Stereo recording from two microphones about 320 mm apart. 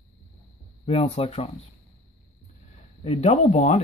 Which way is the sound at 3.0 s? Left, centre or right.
Left.